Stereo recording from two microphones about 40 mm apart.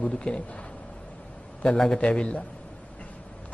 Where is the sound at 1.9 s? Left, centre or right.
Left.